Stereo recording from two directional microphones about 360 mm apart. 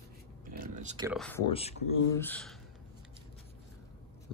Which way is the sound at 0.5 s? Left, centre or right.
Right.